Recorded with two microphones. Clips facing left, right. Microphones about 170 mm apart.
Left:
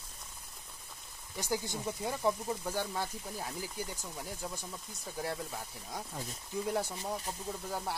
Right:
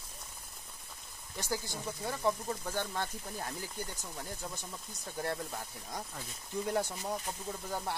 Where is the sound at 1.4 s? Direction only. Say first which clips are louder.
Left 2 dB; 15° left (ahead or behind).